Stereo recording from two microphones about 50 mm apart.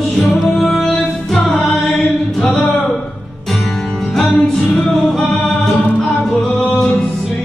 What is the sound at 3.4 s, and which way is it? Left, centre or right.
Music, centre.